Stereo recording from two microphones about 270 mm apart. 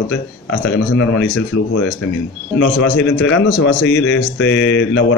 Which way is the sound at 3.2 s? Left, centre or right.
Left.